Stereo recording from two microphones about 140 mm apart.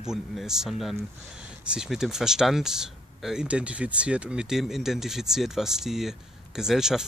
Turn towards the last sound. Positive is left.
turn(degrees=-5)  # may be behind; listen again after turning